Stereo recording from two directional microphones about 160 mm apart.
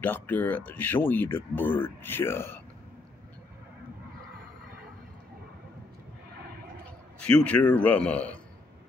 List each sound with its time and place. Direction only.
0.0 s speech: 10° left (ahead or behind)
7.2 s speech: 5° left (ahead or behind)